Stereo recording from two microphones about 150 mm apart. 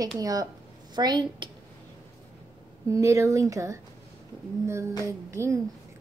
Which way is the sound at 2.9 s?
20° right (ahead or behind).